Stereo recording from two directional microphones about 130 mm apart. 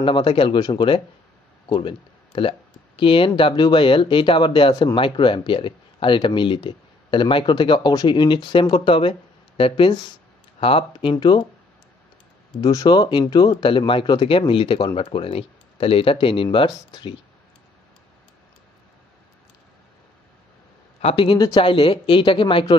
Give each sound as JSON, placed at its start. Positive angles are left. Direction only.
{"t": 0.0, "sound": "speech", "side_deg": 40}
{"t": 12.5, "sound": "speech", "side_deg": 30}
{"t": 21.0, "sound": "speech", "side_deg": 45}